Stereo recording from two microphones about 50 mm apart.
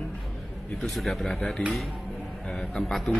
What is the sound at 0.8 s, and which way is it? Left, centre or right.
Speech, centre.